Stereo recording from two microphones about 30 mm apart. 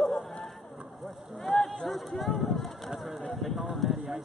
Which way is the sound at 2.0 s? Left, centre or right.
Centre.